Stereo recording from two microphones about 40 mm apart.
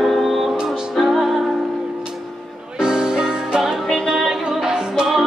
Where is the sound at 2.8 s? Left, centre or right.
Centre.